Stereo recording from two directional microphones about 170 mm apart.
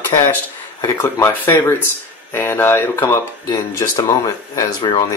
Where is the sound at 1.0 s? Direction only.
15° left (ahead or behind).